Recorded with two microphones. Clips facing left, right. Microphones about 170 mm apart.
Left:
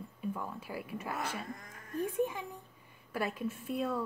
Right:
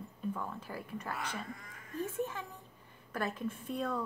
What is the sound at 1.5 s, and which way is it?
Speech, 45° left (ahead or behind).